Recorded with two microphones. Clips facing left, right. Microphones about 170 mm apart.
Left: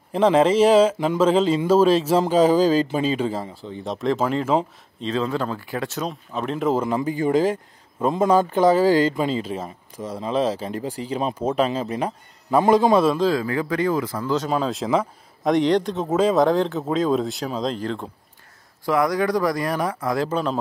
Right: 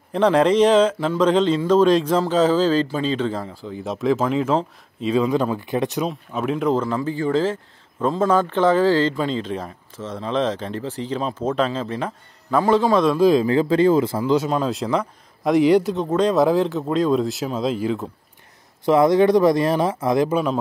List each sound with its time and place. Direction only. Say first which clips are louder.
0.1 s speech: even; 5° left (ahead or behind)
5.0 s speech: right 5 dB; 10° right (ahead or behind)
6.0 s speech: right 3 dB; 5° right (ahead or behind)
6.7 s speech: even; 10° left (ahead or behind)
13.2 s speech: right 5 dB; 20° right (ahead or behind)
14.5 s speech: even; centre (ahead or behind)
18.9 s speech: right 6 dB; 25° right (ahead or behind)
20.2 s speech: right 3 dB; 10° right (ahead or behind)